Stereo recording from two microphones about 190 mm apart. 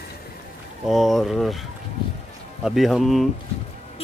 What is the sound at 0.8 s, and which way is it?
Speech, centre (ahead or behind).